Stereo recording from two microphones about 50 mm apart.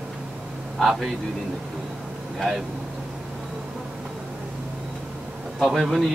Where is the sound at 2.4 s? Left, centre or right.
Centre.